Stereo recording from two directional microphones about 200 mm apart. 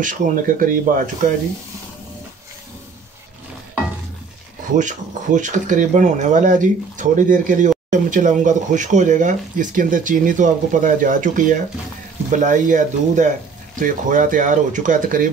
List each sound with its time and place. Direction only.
0.0 s speech: 40° right (ahead or behind)
4.7 s speech: 40° right (ahead or behind)